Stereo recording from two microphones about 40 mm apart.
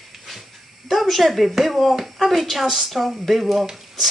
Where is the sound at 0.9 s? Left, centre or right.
Centre.